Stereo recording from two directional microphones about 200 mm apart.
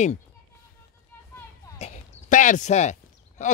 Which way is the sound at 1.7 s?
35° left (ahead or behind).